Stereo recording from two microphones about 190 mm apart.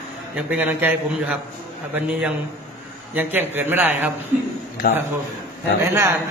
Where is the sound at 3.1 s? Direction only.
10° right (ahead or behind).